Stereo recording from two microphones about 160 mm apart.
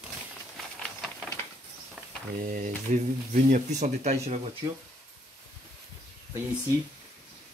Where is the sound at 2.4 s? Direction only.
55° right (ahead or behind).